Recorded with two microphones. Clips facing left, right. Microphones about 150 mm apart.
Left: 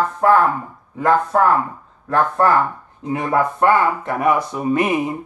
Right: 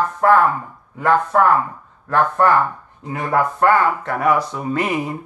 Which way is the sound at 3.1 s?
25° left (ahead or behind).